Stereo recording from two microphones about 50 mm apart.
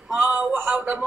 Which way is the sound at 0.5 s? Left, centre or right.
Right.